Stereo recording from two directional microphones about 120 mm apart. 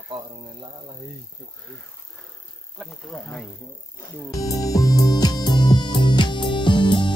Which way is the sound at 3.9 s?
30° left (ahead or behind).